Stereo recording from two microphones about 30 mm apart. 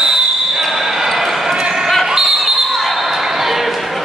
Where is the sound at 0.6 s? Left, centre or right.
Centre.